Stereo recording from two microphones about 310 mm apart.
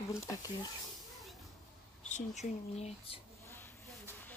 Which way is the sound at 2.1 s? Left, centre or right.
Left.